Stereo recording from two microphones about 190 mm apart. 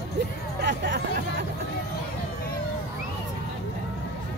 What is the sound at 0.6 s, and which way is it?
Music, 65° right (ahead or behind).